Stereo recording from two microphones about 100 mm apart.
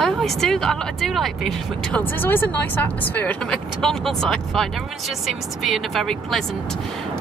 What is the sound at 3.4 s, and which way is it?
Speech, 5° left (ahead or behind).